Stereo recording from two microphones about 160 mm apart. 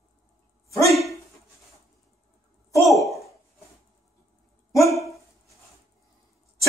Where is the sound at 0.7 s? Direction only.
20° left (ahead or behind).